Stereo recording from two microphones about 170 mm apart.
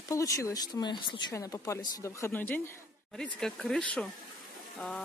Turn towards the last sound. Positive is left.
turn(degrees=5)  # may be behind; listen again after turning